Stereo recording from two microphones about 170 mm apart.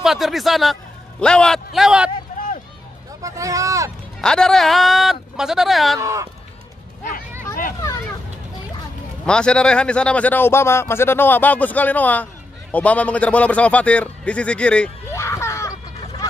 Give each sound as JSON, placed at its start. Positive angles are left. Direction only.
{"t": 0.0, "sound": "speech", "side_deg": 0}
{"t": 3.2, "sound": "speech", "side_deg": -20}
{"t": 4.2, "sound": "speech", "side_deg": 5}
{"t": 5.9, "sound": "speech", "side_deg": -20}
{"t": 9.2, "sound": "a man's voice", "side_deg": 5}
{"t": 15.2, "sound": "a sound", "side_deg": 15}